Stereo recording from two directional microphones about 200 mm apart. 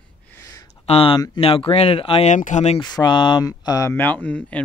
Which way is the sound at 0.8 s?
30° left (ahead or behind).